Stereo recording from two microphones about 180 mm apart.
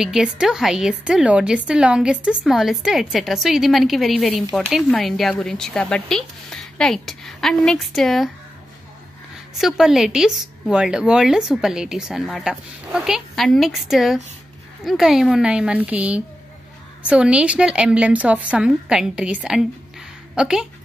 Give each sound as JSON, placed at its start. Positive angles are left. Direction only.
{"t": 0.0, "sound": "a woman's voice", "side_deg": -5}
{"t": 9.6, "sound": "a woman's voice", "side_deg": 0}